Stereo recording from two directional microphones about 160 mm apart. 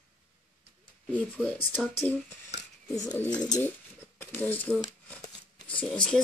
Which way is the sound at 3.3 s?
25° left (ahead or behind).